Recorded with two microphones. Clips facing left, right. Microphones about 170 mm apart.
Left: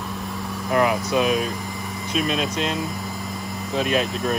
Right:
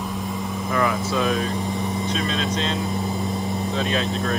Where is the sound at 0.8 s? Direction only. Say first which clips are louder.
Left 2 dB; 15° left (ahead or behind).